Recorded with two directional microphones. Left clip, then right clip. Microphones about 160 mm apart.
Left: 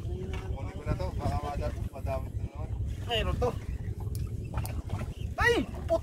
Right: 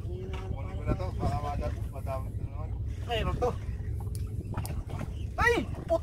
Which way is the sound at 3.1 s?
25° left (ahead or behind).